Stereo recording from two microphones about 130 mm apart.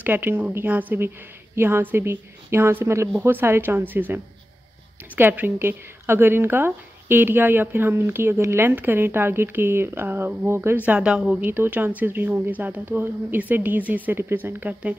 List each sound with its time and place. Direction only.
0.0 s speech: 15° right (ahead or behind)
5.1 s speech: 15° right (ahead or behind)
10.9 s speech: 10° right (ahead or behind)